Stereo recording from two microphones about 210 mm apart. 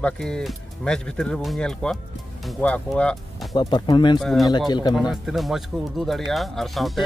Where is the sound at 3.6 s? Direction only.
20° left (ahead or behind).